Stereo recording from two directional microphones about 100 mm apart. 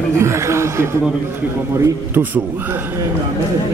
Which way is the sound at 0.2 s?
30° right (ahead or behind).